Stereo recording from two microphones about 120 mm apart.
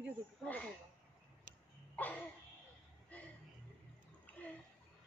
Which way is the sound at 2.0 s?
15° left (ahead or behind).